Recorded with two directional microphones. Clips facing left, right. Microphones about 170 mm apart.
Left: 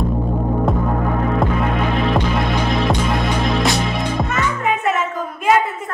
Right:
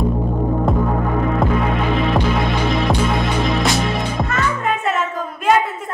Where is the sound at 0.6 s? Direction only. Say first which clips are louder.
Even; centre (ahead or behind).